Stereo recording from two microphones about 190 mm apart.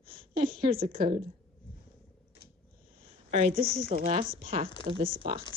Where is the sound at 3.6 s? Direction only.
50° right (ahead or behind).